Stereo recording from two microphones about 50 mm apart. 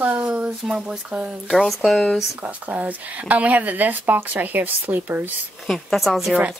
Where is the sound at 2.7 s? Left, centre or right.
Right.